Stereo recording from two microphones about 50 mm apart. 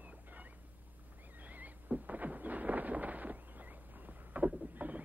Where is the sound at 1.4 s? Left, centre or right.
Right.